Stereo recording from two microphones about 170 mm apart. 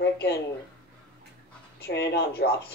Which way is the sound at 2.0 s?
70° left (ahead or behind).